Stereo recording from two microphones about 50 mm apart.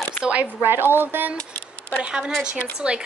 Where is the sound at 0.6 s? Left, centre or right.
Right.